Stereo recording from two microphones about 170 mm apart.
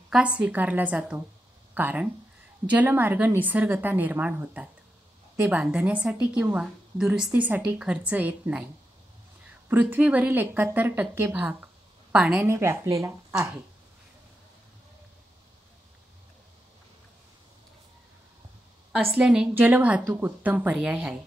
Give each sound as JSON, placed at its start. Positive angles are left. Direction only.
{"t": 0.1, "sound": "a woman's voice", "side_deg": -5}
{"t": 9.7, "sound": "a woman's voice", "side_deg": -10}
{"t": 12.4, "sound": "a woman's voice", "side_deg": -15}
{"t": 18.9, "sound": "a woman's voice", "side_deg": -5}